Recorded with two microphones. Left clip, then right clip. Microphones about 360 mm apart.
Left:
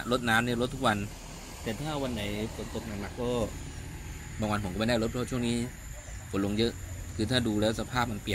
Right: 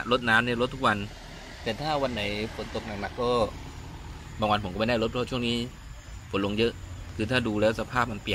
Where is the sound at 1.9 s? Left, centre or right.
Right.